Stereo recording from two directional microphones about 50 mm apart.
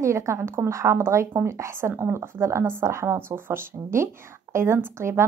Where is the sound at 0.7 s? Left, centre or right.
Right.